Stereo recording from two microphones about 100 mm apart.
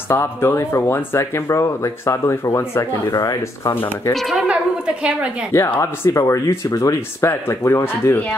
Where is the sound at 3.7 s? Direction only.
20° left (ahead or behind).